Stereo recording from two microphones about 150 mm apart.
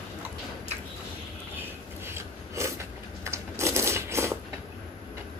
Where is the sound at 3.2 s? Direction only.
20° right (ahead or behind).